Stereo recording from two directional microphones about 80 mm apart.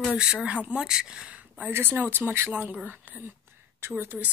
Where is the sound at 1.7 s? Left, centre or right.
Right.